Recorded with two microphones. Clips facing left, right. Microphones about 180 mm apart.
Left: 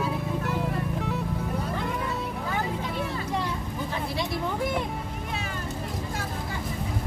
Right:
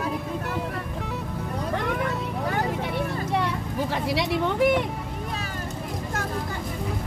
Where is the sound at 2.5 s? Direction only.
65° right (ahead or behind).